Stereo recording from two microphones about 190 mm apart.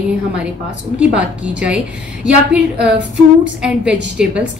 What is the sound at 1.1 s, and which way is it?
Speech, 5° right (ahead or behind).